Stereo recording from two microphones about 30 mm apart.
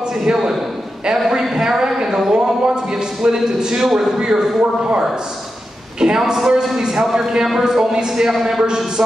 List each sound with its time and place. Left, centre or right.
0.2 s a man's voice: centre
2.0 s a sound: centre
2.3 s a man's voice: right
3.8 s a man's voice: centre
4.2 s speech: right
6.1 s a man's voice: right
8.3 s a man's voice: centre
8.6 s speech: right